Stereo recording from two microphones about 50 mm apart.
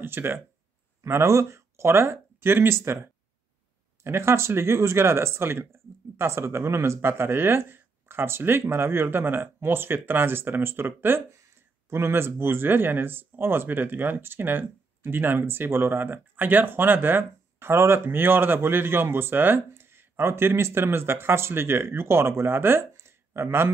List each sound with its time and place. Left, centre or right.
0.0 s speech: right
1.0 s speech: right
4.0 s speech: right